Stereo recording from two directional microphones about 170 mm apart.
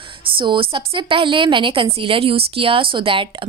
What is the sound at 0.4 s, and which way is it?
A woman's voice, 30° right (ahead or behind).